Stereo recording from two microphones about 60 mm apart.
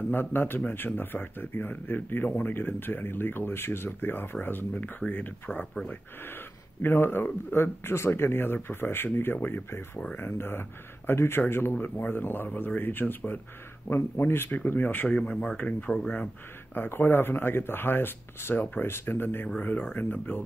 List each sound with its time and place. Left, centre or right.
0.1 s speech: left
11.7 s speech: left
15.0 s speech: centre
16.7 s speech: left